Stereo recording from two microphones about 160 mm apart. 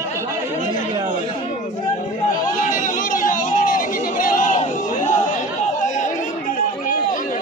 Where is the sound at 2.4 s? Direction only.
55° left (ahead or behind).